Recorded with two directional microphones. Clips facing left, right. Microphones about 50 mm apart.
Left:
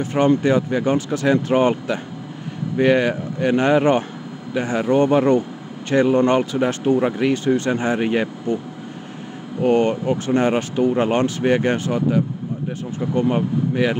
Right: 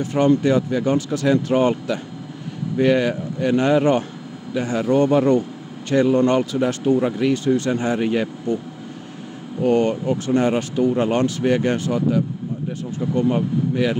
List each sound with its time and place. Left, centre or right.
0.0 s speech: left
9.6 s speech: left